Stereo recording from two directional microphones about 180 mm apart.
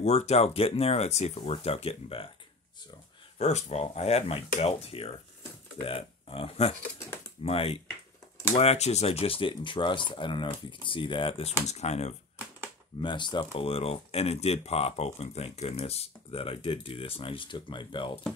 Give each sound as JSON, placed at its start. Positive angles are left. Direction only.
{"t": 0.0, "sound": "speech", "side_deg": 35}
{"t": 3.3, "sound": "speech", "side_deg": 40}
{"t": 13.0, "sound": "speech", "side_deg": 25}